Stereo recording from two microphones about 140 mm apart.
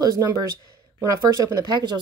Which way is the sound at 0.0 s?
25° right (ahead or behind).